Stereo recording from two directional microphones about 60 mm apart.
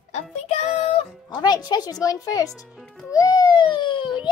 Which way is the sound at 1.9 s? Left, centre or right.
Left.